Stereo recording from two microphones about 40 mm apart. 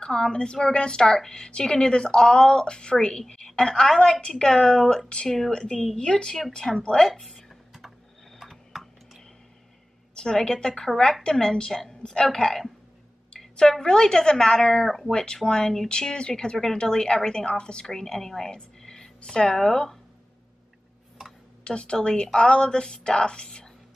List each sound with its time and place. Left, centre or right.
0.0 s a woman's voice: centre
8.4 s a sound: centre
10.1 s a woman's voice: left
14.9 s speech: centre
15.3 s a woman's voice: centre
21.6 s a woman's voice: left